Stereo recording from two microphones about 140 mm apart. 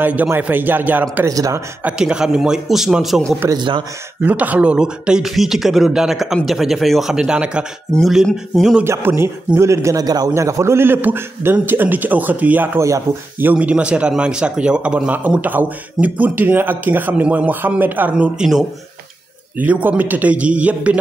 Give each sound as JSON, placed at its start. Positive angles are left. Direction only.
{"t": 0.0, "sound": "a man's voice", "side_deg": -10}
{"t": 1.1, "sound": "a man's voice", "side_deg": -25}
{"t": 1.8, "sound": "a man's voice", "side_deg": -10}
{"t": 3.5, "sound": "a man's voice", "side_deg": -35}
{"t": 4.2, "sound": "a man's voice", "side_deg": -10}
{"t": 8.8, "sound": "a man's voice", "side_deg": -20}